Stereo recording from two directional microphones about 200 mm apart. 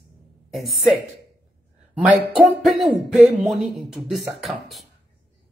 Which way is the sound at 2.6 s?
Centre (ahead or behind).